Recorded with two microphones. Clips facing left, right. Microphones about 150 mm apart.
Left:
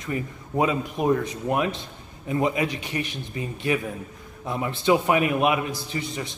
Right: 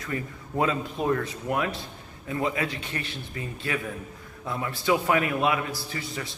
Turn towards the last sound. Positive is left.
turn(degrees=20)  # may be behind; listen again after turning